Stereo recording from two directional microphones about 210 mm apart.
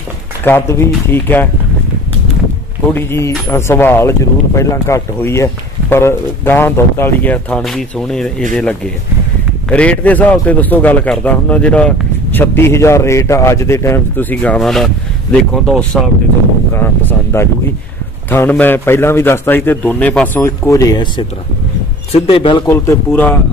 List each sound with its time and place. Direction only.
0.4 s a man's voice: 10° left (ahead or behind)
2.9 s a man's voice: 10° left (ahead or behind)
22.7 s a man's voice: 10° left (ahead or behind)